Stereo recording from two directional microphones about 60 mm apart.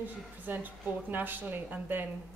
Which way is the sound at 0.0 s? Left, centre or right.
Right.